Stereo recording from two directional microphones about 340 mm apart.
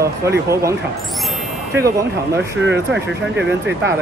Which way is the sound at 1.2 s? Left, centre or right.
Centre.